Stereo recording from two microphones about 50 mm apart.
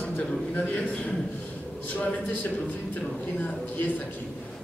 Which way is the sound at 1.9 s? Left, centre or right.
Left.